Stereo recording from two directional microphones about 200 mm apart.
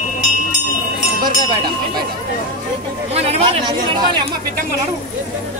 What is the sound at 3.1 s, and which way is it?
Speech, 30° right (ahead or behind).